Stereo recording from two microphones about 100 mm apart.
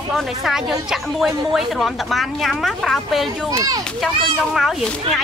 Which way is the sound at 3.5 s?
35° right (ahead or behind).